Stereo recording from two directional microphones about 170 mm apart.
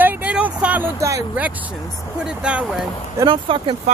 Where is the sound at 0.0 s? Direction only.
10° right (ahead or behind).